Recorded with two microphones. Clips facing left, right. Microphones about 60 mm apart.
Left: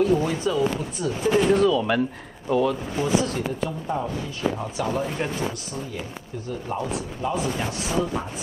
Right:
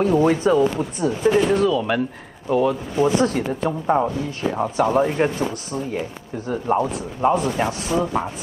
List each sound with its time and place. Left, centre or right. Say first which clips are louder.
0.0 s speech: right 4 dB; right
0.4 s chopping: right 6 dB; right
1.5 s speech: right 1 dB; centre
3.0 s speech: right 6 dB; right
4.6 s speech: right 8 dB; right
7.4 s chopping: right 5 dB; right